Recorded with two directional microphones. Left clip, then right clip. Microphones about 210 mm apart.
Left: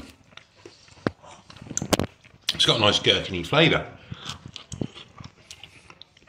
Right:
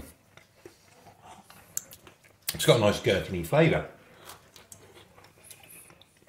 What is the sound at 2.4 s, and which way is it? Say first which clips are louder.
Speech: left 3 dB; 20° right (ahead or behind).